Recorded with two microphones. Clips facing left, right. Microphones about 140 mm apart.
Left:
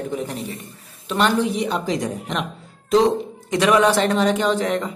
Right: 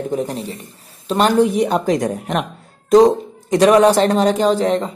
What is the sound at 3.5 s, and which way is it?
Speech, 40° right (ahead or behind).